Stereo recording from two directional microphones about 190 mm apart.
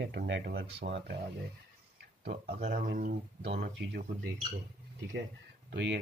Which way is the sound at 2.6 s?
40° right (ahead or behind).